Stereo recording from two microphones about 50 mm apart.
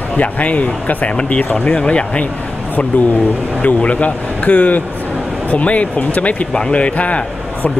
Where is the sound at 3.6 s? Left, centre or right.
Left.